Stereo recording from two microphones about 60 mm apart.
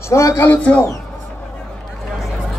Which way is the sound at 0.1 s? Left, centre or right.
Left.